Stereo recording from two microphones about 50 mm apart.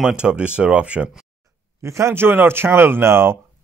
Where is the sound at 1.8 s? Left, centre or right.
Right.